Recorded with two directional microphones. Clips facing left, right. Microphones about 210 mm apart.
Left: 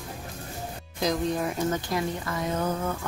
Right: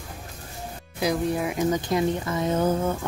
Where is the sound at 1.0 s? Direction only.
10° right (ahead or behind); by 3.1 s 25° right (ahead or behind).